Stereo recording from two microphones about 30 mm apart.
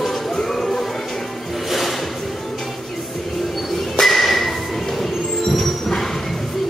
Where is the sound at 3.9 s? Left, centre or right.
Centre.